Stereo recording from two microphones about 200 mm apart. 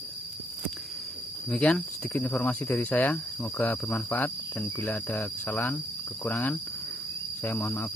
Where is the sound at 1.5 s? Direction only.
5° left (ahead or behind).